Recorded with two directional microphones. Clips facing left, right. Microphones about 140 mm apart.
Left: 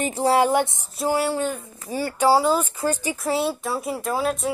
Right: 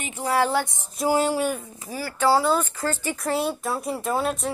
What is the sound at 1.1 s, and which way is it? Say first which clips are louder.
Speech: right 1 dB; 15° right (ahead or behind).